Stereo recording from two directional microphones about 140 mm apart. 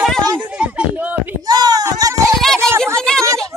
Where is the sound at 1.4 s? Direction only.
30° right (ahead or behind).